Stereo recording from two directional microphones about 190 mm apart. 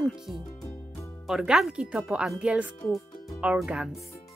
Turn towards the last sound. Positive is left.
turn(degrees=0)  # may be behind; listen again after turning